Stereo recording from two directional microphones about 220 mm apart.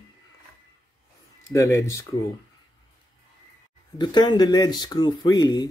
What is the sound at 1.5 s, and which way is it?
Speech, 15° left (ahead or behind).